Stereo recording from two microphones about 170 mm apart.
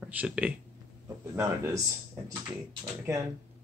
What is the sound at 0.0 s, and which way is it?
A man's voice, 10° right (ahead or behind).